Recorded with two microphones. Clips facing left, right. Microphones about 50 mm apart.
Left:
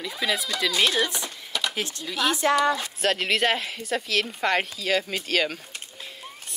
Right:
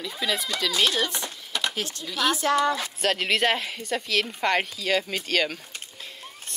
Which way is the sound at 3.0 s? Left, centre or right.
Centre.